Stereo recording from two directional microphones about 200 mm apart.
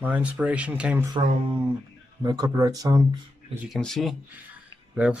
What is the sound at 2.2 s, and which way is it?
Speech, 20° right (ahead or behind).